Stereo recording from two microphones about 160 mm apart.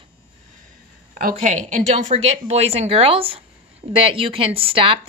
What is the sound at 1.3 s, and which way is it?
Speech, 50° right (ahead or behind).